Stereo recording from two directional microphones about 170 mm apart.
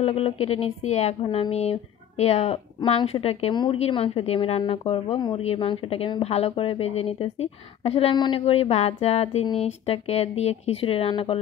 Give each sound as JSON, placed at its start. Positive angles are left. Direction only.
{"t": 0.0, "sound": "speech", "side_deg": 35}